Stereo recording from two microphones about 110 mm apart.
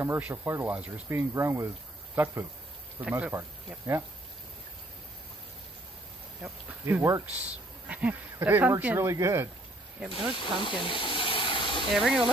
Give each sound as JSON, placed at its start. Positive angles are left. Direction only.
{"t": 0.0, "sound": "speech", "side_deg": -25}
{"t": 3.3, "sound": "speech", "side_deg": -25}
{"t": 6.9, "sound": "speech", "side_deg": -25}
{"t": 7.3, "sound": "speech", "side_deg": -15}
{"t": 10.4, "sound": "a sound", "side_deg": 45}
{"t": 11.9, "sound": "speech", "side_deg": 0}